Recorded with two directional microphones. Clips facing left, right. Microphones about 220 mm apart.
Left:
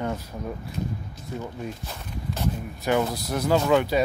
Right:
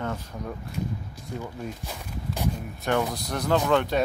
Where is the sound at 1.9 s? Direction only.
15° right (ahead or behind).